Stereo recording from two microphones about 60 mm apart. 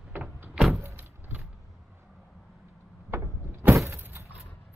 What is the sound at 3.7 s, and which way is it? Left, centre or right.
Vehicle, right.